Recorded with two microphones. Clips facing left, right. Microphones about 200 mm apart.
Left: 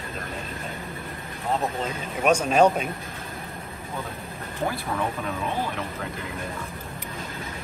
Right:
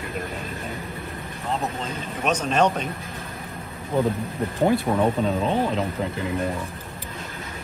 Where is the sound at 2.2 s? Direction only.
10° left (ahead or behind).